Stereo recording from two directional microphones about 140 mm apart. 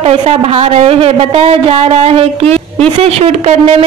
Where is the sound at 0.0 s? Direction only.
45° right (ahead or behind).